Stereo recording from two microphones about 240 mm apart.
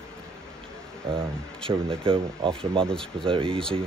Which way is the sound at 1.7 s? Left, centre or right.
Right.